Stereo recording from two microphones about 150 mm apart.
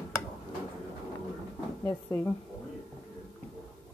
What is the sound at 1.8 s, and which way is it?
Speech, 20° left (ahead or behind).